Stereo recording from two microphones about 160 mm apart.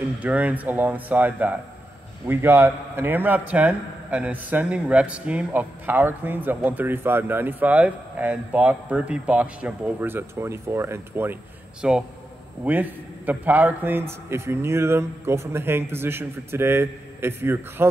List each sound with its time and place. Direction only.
0.2 s a man's voice: 10° right (ahead or behind)